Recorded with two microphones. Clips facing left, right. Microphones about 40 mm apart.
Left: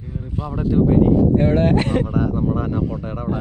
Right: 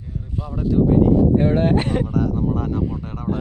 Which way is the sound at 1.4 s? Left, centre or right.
Left.